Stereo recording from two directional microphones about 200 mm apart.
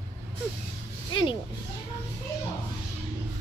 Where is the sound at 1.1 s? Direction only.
25° left (ahead or behind).